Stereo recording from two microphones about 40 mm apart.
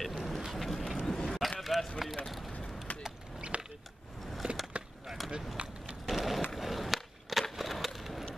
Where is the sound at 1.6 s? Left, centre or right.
Centre.